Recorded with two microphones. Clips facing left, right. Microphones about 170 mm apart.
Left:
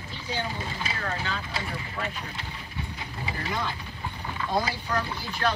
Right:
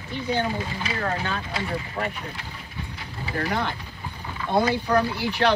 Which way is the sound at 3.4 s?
65° right (ahead or behind).